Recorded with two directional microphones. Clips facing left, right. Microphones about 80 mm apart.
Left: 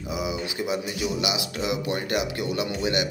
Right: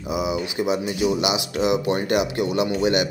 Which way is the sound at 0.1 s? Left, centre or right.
Right.